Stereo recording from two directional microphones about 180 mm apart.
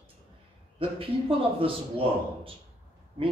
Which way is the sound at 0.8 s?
30° right (ahead or behind).